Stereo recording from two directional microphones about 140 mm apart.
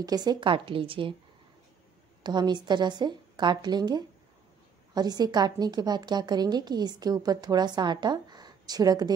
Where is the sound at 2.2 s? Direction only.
30° right (ahead or behind).